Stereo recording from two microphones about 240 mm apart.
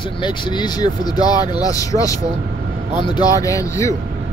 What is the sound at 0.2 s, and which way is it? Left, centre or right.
Speech, centre.